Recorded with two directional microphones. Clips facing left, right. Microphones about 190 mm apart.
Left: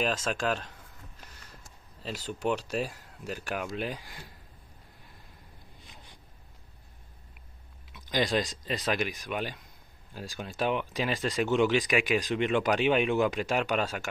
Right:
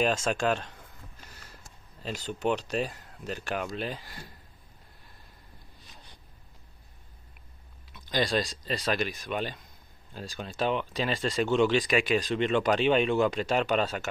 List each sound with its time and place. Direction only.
0.0 s speech: centre (ahead or behind)
2.0 s speech: 5° left (ahead or behind)
7.9 s speech: 15° left (ahead or behind)